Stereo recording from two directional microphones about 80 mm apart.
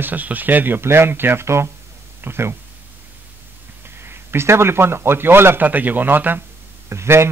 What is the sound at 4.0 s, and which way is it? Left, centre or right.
Speech, right.